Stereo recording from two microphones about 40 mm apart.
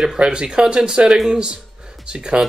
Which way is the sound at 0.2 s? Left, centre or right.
Right.